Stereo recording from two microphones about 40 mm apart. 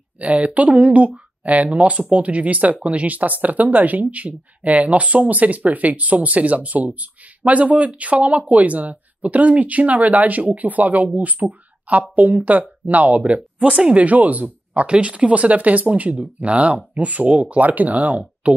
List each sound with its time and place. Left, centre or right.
0.2 s speech: right
13.7 s speech: right
13.9 s speech: right